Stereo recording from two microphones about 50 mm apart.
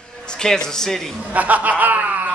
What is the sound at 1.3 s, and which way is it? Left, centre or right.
Snicker, right.